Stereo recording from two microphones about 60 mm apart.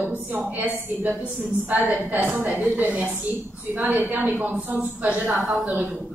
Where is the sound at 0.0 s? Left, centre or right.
Right.